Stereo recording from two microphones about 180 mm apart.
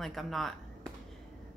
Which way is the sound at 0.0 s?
Centre (ahead or behind).